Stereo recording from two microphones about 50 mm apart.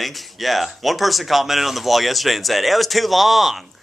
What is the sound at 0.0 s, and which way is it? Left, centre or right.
Speech, centre.